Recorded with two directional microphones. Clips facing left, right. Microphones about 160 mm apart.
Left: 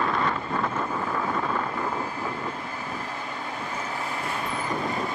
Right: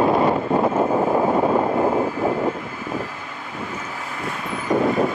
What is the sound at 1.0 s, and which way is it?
Vehicle, 50° right (ahead or behind).